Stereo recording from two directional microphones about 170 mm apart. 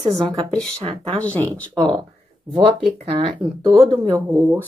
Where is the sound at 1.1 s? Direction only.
10° left (ahead or behind).